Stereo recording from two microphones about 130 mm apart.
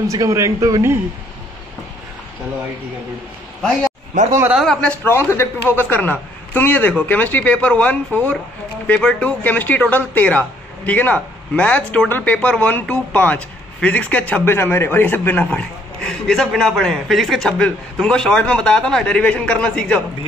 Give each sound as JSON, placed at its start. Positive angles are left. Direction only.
{"t": 0.1, "sound": "a man's voice", "side_deg": -25}
{"t": 4.5, "sound": "a man's voice", "side_deg": -5}
{"t": 4.8, "sound": "speech", "side_deg": 15}